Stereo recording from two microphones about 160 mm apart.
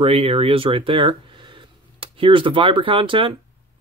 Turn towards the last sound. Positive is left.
turn(degrees=-35)  # may be behind; listen again after turning